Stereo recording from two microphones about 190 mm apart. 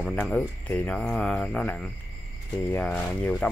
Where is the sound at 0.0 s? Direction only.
5° left (ahead or behind).